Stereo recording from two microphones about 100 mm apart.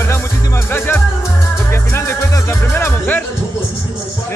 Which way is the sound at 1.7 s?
25° left (ahead or behind).